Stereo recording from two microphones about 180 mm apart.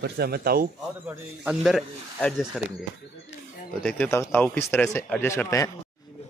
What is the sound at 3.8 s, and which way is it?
Speech, 10° left (ahead or behind).